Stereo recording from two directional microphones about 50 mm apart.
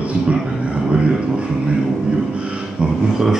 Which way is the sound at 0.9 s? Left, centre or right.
Right.